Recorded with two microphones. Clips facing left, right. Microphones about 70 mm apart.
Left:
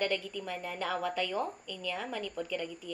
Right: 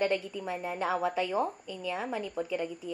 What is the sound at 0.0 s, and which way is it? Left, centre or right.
A woman's voice, centre.